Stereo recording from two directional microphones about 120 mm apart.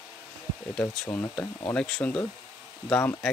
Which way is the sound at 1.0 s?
15° left (ahead or behind).